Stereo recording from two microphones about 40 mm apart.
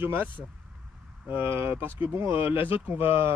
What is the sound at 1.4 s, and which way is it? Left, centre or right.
Speech, right.